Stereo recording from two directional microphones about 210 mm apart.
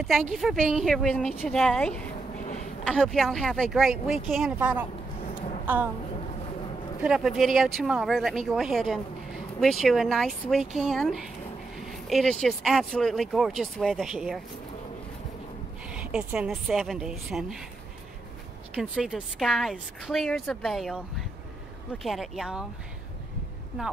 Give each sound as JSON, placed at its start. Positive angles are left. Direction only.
{"t": 0.0, "sound": "speech", "side_deg": 0}
{"t": 5.3, "sound": "a sound", "side_deg": 30}
{"t": 7.0, "sound": "speech", "side_deg": 0}
{"t": 15.9, "sound": "speech", "side_deg": -5}
{"t": 18.8, "sound": "speech", "side_deg": -5}